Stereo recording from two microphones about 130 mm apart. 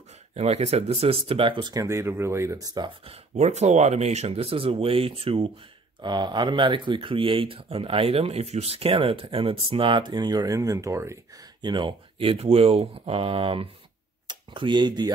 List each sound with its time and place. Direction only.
0.3 s speech: 55° right (ahead or behind)
1.6 s speech: 30° right (ahead or behind)
3.1 s speech: 60° right (ahead or behind)
5.9 s speech: 35° right (ahead or behind)
11.6 s speech: 35° right (ahead or behind)
14.2 s tick-tock: 40° right (ahead or behind)